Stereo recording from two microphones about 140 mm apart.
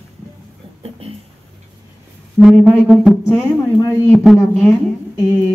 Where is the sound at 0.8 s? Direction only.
45° right (ahead or behind).